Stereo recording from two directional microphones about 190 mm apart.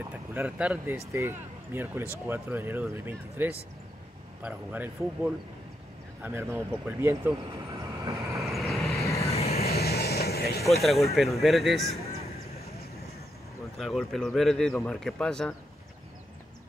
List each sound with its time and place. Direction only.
0.1 s speech: 10° right (ahead or behind)
8.5 s vehicle: centre (ahead or behind)
9.0 s vehicle: 15° left (ahead or behind)
9.3 s vehicle: 35° left (ahead or behind)
9.8 s vehicle: 55° left (ahead or behind)
10.8 s speech: centre (ahead or behind)
13.7 s speech: centre (ahead or behind)